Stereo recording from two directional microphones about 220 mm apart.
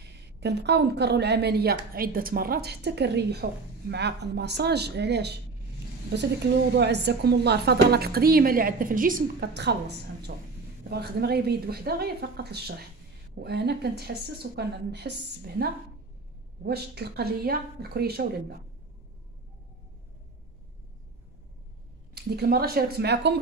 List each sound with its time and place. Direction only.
0.0 s a woman's voice: 50° right (ahead or behind)
22.1 s a woman's voice: 45° right (ahead or behind)